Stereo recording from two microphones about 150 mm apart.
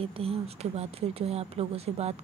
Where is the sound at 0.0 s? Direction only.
40° right (ahead or behind).